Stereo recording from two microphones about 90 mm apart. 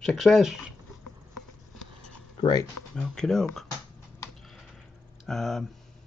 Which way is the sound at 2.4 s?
45° left (ahead or behind).